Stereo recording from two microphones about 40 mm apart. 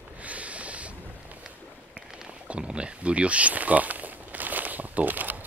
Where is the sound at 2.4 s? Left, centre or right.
Right.